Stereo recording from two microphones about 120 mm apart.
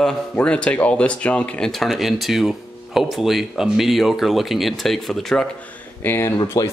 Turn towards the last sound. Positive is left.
turn(degrees=30)  # may be behind; listen again after turning